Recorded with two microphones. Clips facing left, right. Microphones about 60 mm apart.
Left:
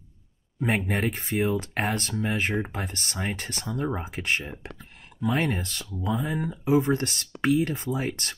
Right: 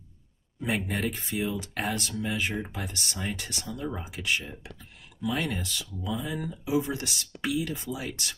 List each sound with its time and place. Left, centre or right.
0.7 s speech: left